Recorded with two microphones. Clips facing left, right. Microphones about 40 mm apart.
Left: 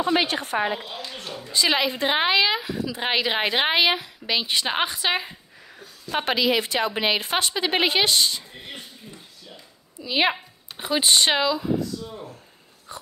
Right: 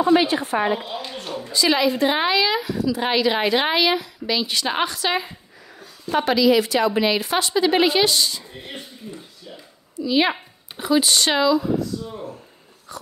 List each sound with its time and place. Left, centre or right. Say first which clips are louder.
0.1 s speech: right 6 dB; left
0.7 s speech: right 4 dB; right
1.5 s a woman's voice: right 3 dB; left
6.1 s a woman's voice: right 5 dB; left
8.5 s a sound: right 3 dB; centre
9.9 s a woman's voice: right 3 dB; centre
12.9 s a woman's voice: right 2 dB; left